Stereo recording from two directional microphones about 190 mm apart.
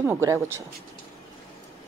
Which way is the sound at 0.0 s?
15° right (ahead or behind).